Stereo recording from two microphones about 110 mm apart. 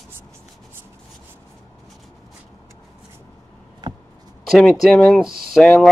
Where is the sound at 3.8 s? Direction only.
40° right (ahead or behind).